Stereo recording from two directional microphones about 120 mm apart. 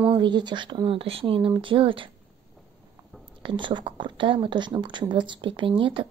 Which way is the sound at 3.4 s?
45° right (ahead or behind).